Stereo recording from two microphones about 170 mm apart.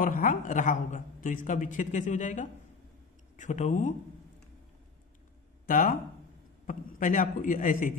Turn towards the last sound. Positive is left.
turn(degrees=50)  # may be behind; listen again after turning